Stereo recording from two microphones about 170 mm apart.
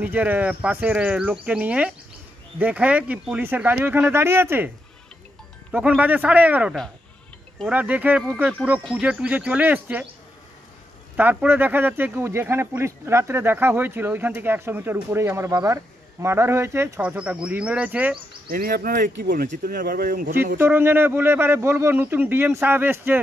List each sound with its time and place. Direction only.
0.0 s speech: 10° right (ahead or behind)
5.7 s speech: 5° right (ahead or behind)
7.7 s speech: 10° right (ahead or behind)
11.1 s speech: 10° right (ahead or behind)
18.5 s speech: 60° right (ahead or behind)
20.5 s speech: 15° right (ahead or behind)